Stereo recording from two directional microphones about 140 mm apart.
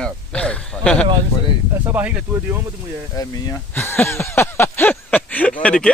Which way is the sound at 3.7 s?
15° left (ahead or behind).